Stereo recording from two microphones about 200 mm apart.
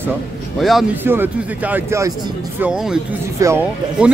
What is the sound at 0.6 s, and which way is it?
A man's voice, centre (ahead or behind).